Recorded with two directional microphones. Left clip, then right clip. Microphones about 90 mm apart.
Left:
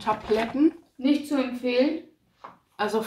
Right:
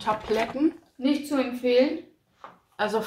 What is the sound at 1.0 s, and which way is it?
Speech, 35° right (ahead or behind).